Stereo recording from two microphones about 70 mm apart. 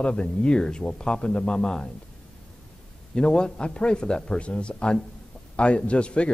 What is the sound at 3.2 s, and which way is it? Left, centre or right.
A man's voice, centre.